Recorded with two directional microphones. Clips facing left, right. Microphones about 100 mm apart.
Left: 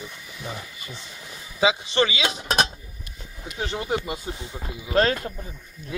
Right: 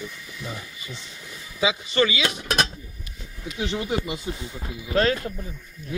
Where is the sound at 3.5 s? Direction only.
40° left (ahead or behind).